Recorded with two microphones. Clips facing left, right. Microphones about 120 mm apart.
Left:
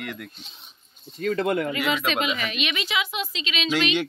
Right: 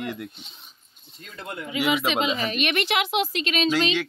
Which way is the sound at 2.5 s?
55° right (ahead or behind).